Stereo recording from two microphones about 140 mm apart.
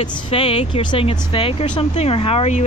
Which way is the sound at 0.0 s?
40° left (ahead or behind).